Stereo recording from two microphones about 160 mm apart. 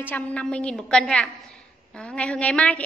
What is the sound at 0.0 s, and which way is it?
A woman's voice, 10° left (ahead or behind).